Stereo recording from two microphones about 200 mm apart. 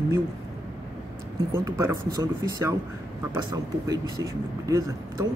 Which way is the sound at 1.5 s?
10° right (ahead or behind).